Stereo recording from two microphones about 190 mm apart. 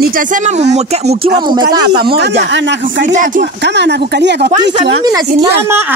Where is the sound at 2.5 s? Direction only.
70° right (ahead or behind).